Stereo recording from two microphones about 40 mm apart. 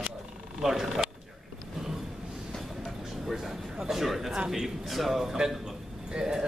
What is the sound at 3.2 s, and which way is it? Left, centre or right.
Speech, centre.